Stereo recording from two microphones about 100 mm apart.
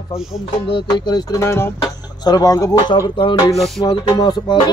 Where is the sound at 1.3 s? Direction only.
30° left (ahead or behind).